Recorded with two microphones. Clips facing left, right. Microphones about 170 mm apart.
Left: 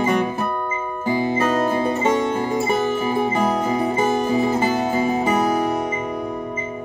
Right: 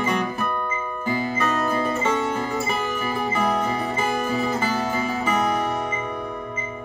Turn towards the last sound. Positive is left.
turn(degrees=35)  # may be behind; listen again after turning